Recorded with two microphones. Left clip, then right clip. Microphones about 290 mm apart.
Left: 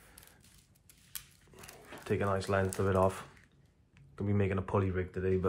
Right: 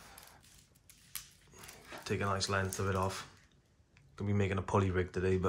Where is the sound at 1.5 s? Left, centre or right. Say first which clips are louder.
Even; centre.